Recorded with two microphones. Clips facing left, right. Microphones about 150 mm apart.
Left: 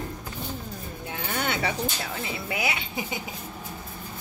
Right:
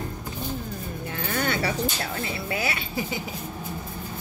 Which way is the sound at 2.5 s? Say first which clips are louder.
Right 1 dB; 15° left (ahead or behind).